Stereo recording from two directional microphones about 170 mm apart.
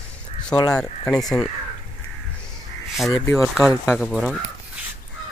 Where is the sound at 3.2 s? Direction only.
10° left (ahead or behind).